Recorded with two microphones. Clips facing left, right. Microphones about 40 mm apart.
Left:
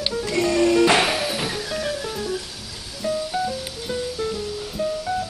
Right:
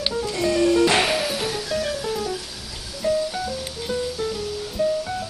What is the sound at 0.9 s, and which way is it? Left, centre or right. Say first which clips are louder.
Music: even; centre.